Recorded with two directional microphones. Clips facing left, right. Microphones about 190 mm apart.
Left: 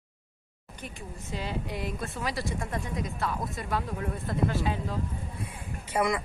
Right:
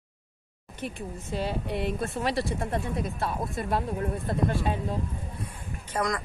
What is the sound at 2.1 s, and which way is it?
Speech, 25° right (ahead or behind).